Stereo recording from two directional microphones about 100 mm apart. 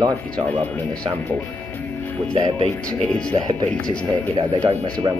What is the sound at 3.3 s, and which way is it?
Speech, 50° right (ahead or behind).